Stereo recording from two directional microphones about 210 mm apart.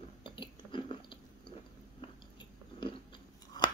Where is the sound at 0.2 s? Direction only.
20° left (ahead or behind).